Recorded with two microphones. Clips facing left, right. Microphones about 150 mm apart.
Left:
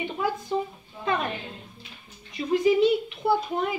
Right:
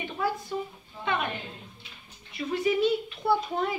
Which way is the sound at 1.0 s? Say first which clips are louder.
Left 3 dB; 35° left (ahead or behind).